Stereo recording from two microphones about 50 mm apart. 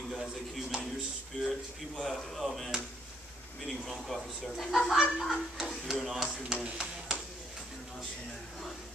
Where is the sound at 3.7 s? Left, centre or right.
Centre.